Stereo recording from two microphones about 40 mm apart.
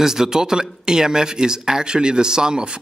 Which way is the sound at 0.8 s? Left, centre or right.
Centre.